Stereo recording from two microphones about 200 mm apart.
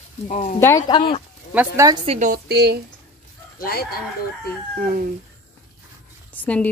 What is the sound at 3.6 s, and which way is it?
Speech, 50° left (ahead or behind).